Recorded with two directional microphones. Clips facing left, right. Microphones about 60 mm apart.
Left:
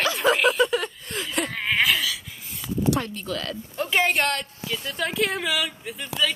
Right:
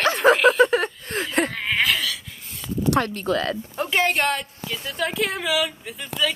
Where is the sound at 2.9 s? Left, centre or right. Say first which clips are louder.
Right 5 dB; right.